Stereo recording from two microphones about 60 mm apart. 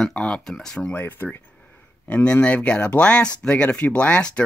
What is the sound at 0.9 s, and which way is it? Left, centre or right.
Speech, left.